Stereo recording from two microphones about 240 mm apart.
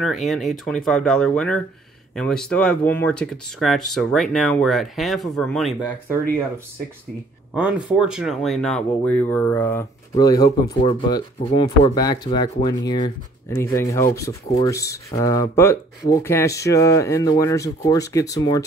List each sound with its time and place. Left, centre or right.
0.0 s speech: centre
7.5 s speech: centre